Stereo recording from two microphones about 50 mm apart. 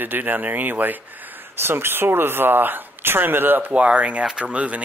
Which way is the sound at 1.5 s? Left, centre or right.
Right.